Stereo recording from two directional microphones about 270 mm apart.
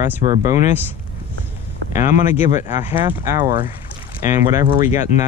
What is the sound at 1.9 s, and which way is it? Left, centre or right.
Speech, centre.